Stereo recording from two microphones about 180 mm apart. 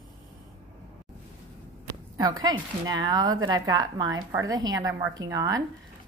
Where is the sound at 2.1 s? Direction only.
20° right (ahead or behind).